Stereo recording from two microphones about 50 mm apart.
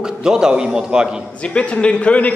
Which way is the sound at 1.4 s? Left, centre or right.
Left.